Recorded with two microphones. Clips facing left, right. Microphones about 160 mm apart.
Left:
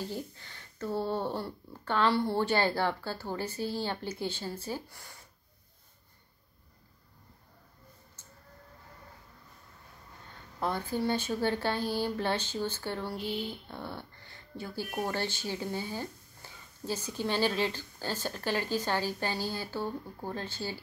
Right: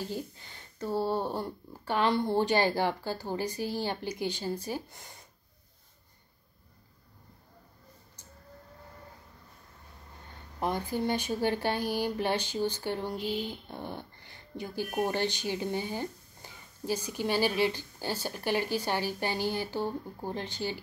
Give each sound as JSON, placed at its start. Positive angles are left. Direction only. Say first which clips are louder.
{"t": 0.1, "sound": "speech", "louder": "right 2 dB", "side_deg": -15}
{"t": 10.6, "sound": "speech", "louder": "right 1 dB", "side_deg": -15}